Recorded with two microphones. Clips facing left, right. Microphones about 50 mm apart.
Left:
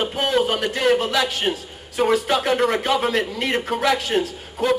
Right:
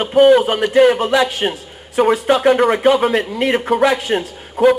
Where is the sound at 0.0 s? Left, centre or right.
Centre.